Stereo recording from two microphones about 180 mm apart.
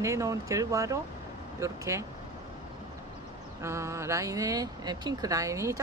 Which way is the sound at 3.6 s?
15° right (ahead or behind).